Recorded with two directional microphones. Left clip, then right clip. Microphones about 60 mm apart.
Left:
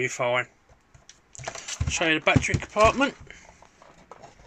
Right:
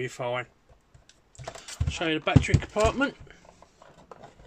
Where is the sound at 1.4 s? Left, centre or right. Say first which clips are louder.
Left 5 dB; centre.